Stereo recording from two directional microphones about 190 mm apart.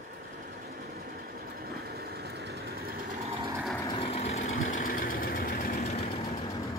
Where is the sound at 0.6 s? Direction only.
50° right (ahead or behind).